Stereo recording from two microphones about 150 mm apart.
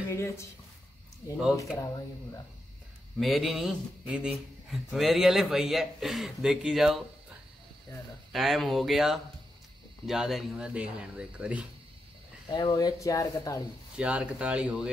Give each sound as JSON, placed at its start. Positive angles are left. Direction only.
{"t": 0.1, "sound": "speech", "side_deg": 20}
{"t": 3.2, "sound": "a man's voice", "side_deg": 0}
{"t": 8.3, "sound": "a man's voice", "side_deg": 0}
{"t": 12.4, "sound": "speech", "side_deg": 30}
{"t": 13.9, "sound": "speech", "side_deg": -10}